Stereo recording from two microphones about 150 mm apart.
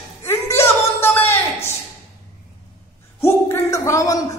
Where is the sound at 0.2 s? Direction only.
15° left (ahead or behind).